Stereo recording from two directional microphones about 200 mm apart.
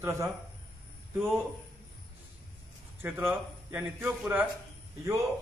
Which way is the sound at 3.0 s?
10° right (ahead or behind).